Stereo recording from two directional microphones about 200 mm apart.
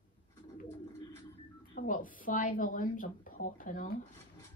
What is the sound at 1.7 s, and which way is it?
Speech, 40° left (ahead or behind).